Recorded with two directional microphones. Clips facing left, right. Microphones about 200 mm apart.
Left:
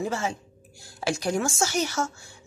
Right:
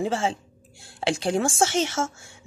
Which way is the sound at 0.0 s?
30° right (ahead or behind).